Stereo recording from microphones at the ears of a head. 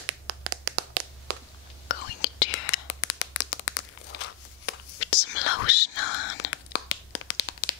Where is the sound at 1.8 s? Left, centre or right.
Left.